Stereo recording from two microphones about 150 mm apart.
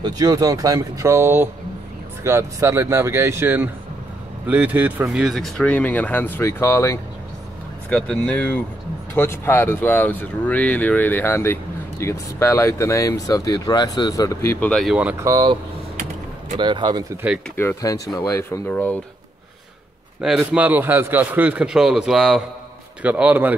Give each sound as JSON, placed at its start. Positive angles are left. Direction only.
{"t": 0.0, "sound": "speech", "side_deg": -25}
{"t": 14.7, "sound": "speech", "side_deg": 0}
{"t": 15.2, "sound": "speech", "side_deg": -25}
{"t": 16.5, "sound": "speech", "side_deg": -30}
{"t": 17.2, "sound": "speech", "side_deg": -10}
{"t": 17.6, "sound": "speech", "side_deg": 20}
{"t": 20.3, "sound": "speech", "side_deg": -10}